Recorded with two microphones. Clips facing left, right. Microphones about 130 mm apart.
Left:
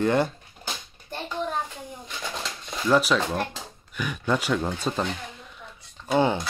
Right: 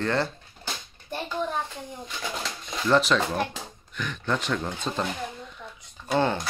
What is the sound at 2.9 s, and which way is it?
Speech, 10° left (ahead or behind).